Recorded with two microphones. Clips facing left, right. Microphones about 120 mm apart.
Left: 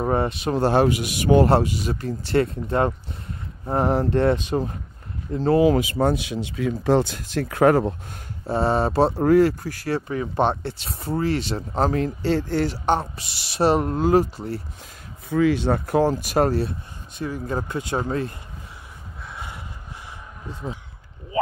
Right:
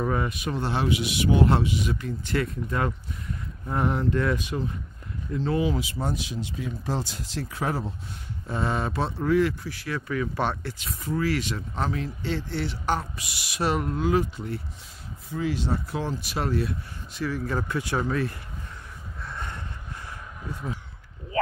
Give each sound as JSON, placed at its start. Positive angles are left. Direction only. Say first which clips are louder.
{"t": 0.0, "sound": "speech", "louder": "left 5 dB", "side_deg": 35}
{"t": 5.7, "sound": "speech", "louder": "left 9 dB", "side_deg": 60}
{"t": 8.5, "sound": "speech", "louder": "left 7 dB", "side_deg": 35}
{"t": 12.8, "sound": "speech", "louder": "left 5 dB", "side_deg": 30}
{"t": 15.2, "sound": "speech", "louder": "left 9 dB", "side_deg": 80}
{"t": 17.2, "sound": "speech", "louder": "left 1 dB", "side_deg": 25}
{"t": 19.2, "sound": "a sound", "louder": "even", "side_deg": 5}